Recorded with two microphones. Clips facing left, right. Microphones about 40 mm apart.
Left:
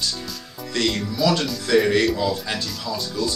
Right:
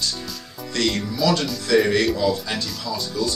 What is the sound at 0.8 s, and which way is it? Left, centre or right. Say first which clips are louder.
Speech: even; centre.